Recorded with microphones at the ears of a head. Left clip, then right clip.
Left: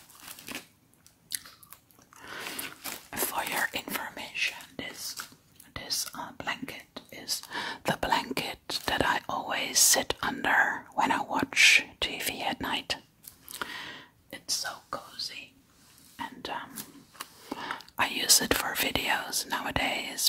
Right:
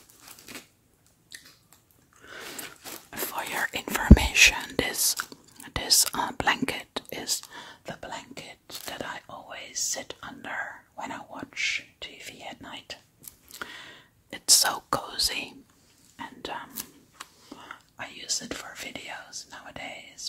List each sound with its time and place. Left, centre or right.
3.2 s whispering: centre
4.0 s whispering: right
7.5 s whispering: left
14.4 s whispering: right
16.3 s whispering: centre
17.5 s whispering: left